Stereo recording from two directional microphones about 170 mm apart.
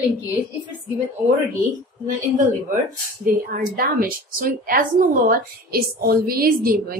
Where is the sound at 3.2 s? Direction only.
60° right (ahead or behind).